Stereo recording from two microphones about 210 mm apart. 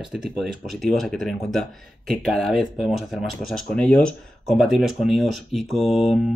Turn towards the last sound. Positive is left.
turn(degrees=30)  # may be behind; listen again after turning